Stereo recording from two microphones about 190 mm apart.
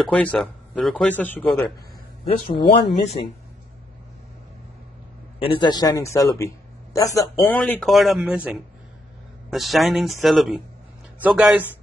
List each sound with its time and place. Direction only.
0.0 s a man's voice: 5° left (ahead or behind)
2.5 s speech: 25° left (ahead or behind)
5.4 s a man's voice: 25° left (ahead or behind); by 8.4 s centre (ahead or behind)
9.5 s speech: centre (ahead or behind)